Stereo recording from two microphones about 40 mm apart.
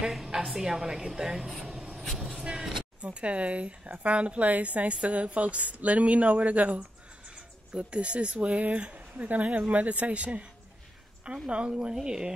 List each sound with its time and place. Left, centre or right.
0.3 s speech: right
3.0 s speech: right
11.4 s speech: right